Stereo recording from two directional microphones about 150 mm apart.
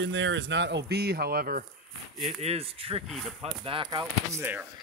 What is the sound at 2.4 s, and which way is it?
Speech, 45° right (ahead or behind).